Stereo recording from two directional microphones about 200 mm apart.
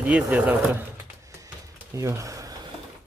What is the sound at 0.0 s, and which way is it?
Speech, 5° right (ahead or behind).